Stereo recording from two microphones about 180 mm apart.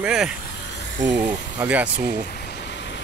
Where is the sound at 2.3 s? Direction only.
65° left (ahead or behind).